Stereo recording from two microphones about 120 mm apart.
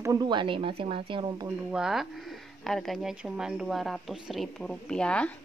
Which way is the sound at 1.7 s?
5° right (ahead or behind).